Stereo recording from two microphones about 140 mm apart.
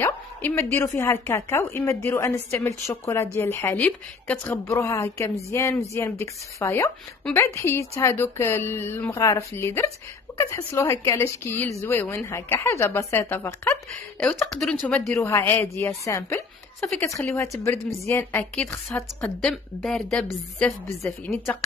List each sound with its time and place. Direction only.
0.0 s a woman's voice: 15° left (ahead or behind)
14.2 s a woman's voice: 5° left (ahead or behind)
19.5 s a woman's voice: 5° left (ahead or behind)
21.3 s a woman's voice: centre (ahead or behind)